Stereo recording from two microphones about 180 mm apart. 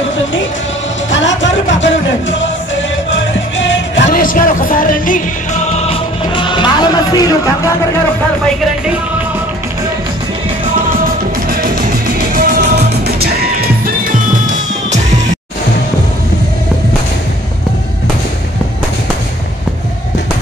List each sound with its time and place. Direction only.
1.1 s music: 90° left
4.1 s music: 50° left (ahead or behind); by 7.7 s 20° left (ahead or behind)
11.4 s music: 55° right (ahead or behind)